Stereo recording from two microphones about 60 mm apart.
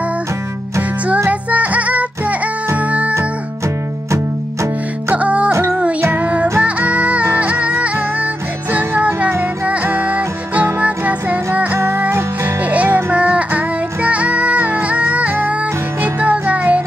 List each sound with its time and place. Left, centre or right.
1.3 s music: right
3.2 s music: right
5.1 s music: right
12.1 s music: right
12.6 s music: right